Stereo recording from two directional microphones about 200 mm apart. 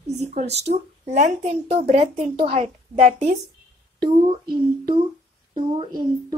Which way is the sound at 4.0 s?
25° right (ahead or behind).